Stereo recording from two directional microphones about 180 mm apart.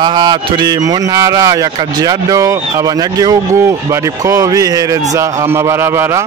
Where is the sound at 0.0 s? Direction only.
25° right (ahead or behind).